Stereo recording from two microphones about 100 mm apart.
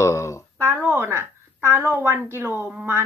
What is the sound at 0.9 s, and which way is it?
A woman's voice, 25° right (ahead or behind).